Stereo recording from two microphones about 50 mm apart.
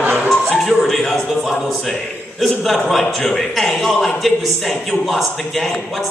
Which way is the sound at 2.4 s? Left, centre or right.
Centre.